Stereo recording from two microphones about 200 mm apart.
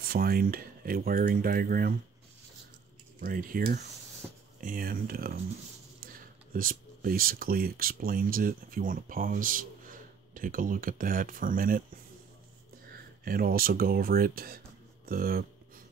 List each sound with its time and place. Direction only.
0.0 s speech: 50° right (ahead or behind)
3.2 s speech: 45° right (ahead or behind)
12.9 s speech: 45° right (ahead or behind)
15.0 s a sound: 45° right (ahead or behind)